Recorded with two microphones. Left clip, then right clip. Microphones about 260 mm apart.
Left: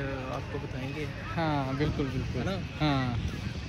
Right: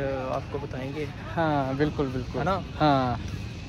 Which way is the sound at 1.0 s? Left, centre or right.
Right.